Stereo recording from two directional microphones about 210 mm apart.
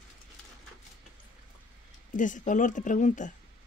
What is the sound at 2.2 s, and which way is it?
Speech, 35° left (ahead or behind).